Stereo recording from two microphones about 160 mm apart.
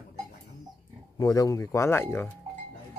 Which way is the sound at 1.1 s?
20° left (ahead or behind).